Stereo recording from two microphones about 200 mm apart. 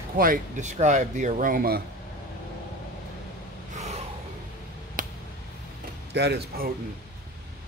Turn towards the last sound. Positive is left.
turn(degrees=-50)  # may be behind; listen again after turning